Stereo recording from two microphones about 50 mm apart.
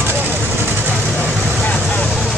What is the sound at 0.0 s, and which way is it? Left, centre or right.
Vehicle, right.